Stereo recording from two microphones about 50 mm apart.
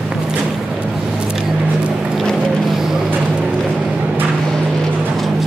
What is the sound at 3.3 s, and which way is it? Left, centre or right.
Vehicle, right.